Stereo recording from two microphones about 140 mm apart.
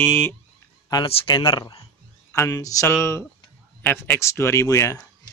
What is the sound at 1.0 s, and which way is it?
Speech, 40° left (ahead or behind).